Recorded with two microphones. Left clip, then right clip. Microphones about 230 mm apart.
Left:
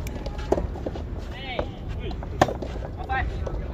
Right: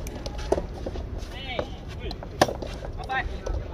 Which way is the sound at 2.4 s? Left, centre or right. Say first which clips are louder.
Left 1 dB; right.